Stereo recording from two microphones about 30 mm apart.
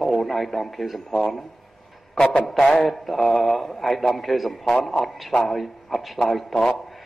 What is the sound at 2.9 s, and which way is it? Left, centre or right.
A man's voice, centre.